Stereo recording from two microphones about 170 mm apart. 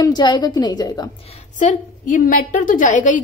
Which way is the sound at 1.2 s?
40° left (ahead or behind).